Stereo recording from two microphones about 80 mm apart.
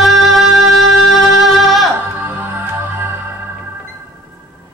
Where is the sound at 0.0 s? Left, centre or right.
Centre.